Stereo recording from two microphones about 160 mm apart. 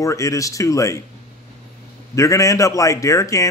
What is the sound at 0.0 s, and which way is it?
Speech, 20° left (ahead or behind).